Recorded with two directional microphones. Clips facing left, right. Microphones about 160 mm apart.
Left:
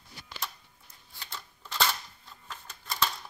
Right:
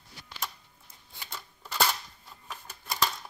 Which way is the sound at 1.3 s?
10° right (ahead or behind).